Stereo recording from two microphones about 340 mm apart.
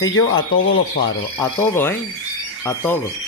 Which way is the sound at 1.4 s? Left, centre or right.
Centre.